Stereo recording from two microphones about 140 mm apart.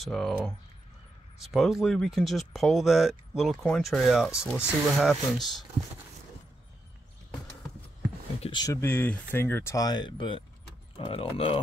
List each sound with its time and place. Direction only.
0.0 s speech: centre (ahead or behind)
1.4 s speech: centre (ahead or behind)
8.4 s a sound: 35° left (ahead or behind)
8.8 s speech: 15° left (ahead or behind); by 11.6 s 40° left (ahead or behind)